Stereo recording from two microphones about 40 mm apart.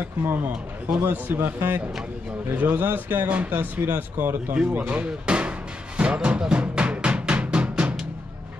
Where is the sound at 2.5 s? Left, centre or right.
Right.